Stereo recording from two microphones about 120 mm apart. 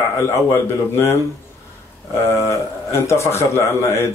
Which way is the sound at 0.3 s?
20° left (ahead or behind).